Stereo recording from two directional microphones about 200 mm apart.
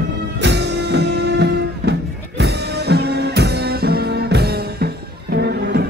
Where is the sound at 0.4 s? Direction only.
60° right (ahead or behind).